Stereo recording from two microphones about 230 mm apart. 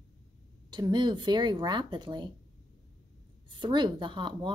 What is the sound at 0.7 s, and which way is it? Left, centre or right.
Speech, centre.